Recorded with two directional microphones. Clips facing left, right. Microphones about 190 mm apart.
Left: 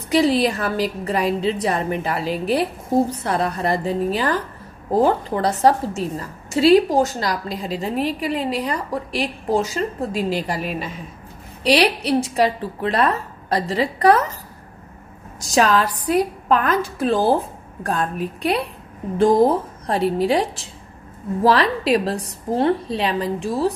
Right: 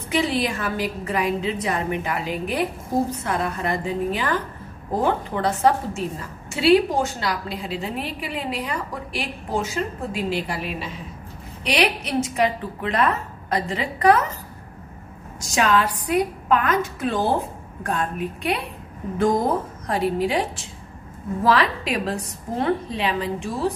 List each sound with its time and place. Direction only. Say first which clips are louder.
0.1 s a woman's voice: left 6 dB; 35° left (ahead or behind)
15.5 s a woman's voice: left 3 dB; 35° left (ahead or behind)
21.5 s a woman's voice: left 4 dB; 35° left (ahead or behind)